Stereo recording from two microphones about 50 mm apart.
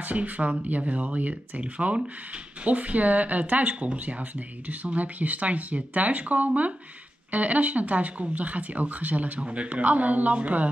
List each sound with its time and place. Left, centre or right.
0.0 s speech: right